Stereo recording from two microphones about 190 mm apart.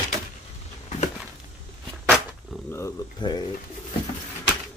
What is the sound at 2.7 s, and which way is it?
Speech, 20° left (ahead or behind).